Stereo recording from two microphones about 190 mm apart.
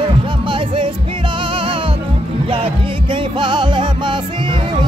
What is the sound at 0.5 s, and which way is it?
Music, 25° right (ahead or behind).